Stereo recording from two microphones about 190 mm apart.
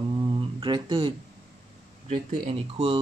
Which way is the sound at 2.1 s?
30° right (ahead or behind).